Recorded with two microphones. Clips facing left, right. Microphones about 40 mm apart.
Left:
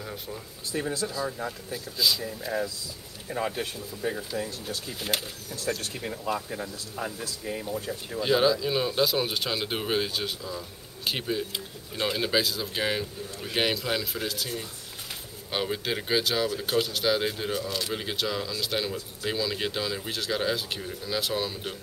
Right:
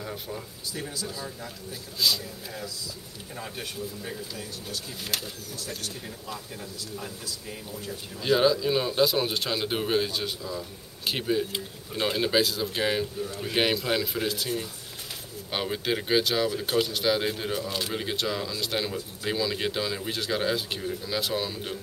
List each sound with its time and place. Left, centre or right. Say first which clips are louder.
0.0 s speech: right 2 dB; centre
0.7 s speech: left 6 dB; left
2.0 s speech: even; centre
3.3 s a man's voice: left 9 dB; left
4.0 s speech: left 6 dB; left
5.0 s speech: left 3 dB; left
5.6 s speech: left 7 dB; left
8.2 s speech: right 1 dB; centre
17.9 s speech: right 1 dB; centre